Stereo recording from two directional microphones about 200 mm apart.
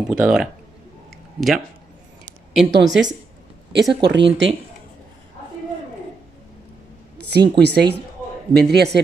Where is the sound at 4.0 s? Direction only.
60° right (ahead or behind).